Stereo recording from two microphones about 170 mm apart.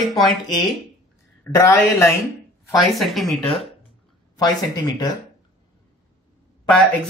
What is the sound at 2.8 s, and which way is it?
Speech, centre (ahead or behind).